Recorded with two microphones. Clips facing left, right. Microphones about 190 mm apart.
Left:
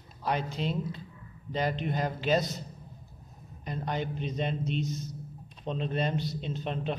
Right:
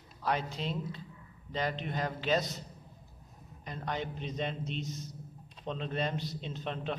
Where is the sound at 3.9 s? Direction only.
Centre (ahead or behind).